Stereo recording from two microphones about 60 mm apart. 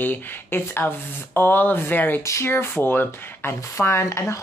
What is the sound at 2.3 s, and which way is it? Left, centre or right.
Speech, left.